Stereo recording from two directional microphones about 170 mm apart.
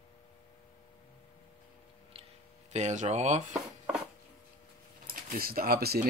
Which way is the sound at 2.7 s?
40° right (ahead or behind).